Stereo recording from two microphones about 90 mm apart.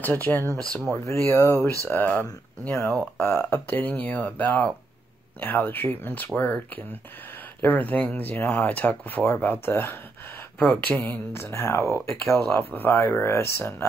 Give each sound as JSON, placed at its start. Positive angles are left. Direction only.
{"t": 0.0, "sound": "speech", "side_deg": 20}
{"t": 1.9, "sound": "speech", "side_deg": 20}
{"t": 3.2, "sound": "speech", "side_deg": 15}
{"t": 3.4, "sound": "speech", "side_deg": 25}
{"t": 10.6, "sound": "speech", "side_deg": 15}
{"t": 12.4, "sound": "speech", "side_deg": 20}